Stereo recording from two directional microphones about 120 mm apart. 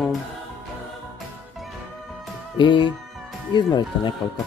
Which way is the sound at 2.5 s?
40° left (ahead or behind).